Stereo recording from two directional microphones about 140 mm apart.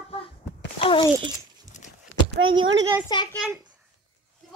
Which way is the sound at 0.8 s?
40° left (ahead or behind).